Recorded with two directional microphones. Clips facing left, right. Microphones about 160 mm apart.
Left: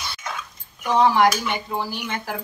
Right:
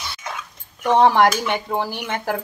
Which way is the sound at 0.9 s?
60° right (ahead or behind).